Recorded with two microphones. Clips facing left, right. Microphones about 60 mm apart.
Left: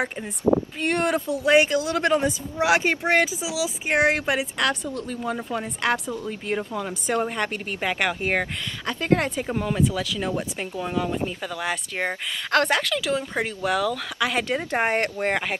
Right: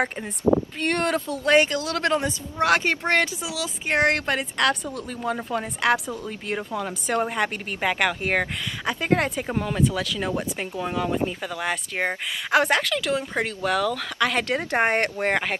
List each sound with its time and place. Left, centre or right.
0.7 s a woman's voice: centre